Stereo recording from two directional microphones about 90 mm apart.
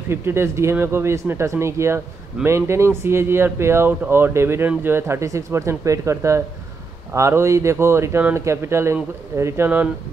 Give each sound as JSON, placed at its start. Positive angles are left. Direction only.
{"t": 0.1, "sound": "speech", "side_deg": -30}